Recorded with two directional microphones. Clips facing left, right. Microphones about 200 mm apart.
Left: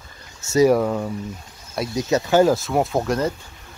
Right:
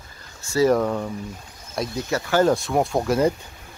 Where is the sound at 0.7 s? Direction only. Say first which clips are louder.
Left 1 dB; 5° left (ahead or behind).